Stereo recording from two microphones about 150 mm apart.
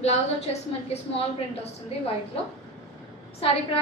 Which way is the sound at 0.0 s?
45° left (ahead or behind).